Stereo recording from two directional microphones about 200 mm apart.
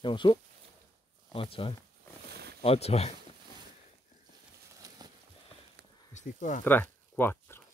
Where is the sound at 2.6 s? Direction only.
30° left (ahead or behind).